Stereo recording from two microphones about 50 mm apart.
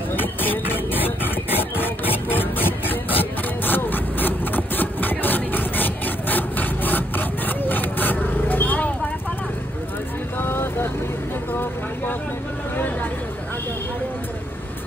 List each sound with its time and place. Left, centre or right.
0.1 s music: left
3.6 s a sound: left
10.4 s vehicle: left